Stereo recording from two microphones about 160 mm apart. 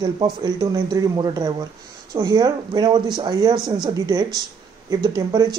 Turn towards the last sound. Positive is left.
turn(degrees=-25)  # may be behind; listen again after turning